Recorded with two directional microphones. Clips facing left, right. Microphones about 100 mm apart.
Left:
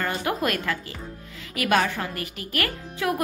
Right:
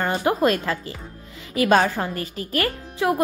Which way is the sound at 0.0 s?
30° right (ahead or behind).